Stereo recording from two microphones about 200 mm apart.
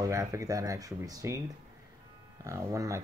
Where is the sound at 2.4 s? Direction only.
15° right (ahead or behind).